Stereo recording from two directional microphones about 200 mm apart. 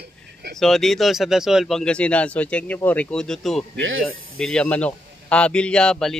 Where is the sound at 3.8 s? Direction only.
80° right.